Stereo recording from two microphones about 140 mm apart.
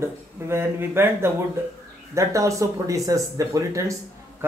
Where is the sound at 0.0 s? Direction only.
15° right (ahead or behind).